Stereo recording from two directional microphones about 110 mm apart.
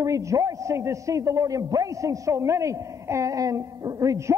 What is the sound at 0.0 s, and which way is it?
A man's voice, 30° right (ahead or behind).